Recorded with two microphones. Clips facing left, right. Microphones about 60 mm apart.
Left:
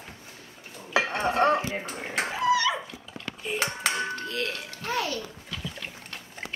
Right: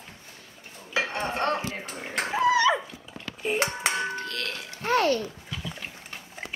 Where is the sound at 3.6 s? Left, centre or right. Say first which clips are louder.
Left 1 dB; centre.